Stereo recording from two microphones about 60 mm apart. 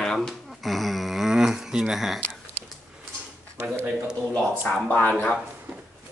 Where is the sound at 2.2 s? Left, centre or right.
Left.